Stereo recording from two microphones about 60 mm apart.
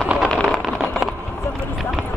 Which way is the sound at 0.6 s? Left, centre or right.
Centre.